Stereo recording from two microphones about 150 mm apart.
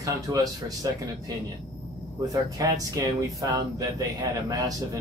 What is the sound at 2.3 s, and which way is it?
Speech, 20° right (ahead or behind).